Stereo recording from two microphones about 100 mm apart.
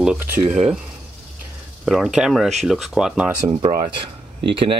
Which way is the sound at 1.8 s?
5° right (ahead or behind).